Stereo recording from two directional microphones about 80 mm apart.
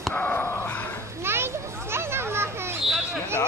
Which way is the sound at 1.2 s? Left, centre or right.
Right.